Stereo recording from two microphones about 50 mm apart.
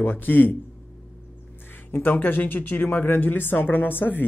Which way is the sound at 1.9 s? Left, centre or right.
Left.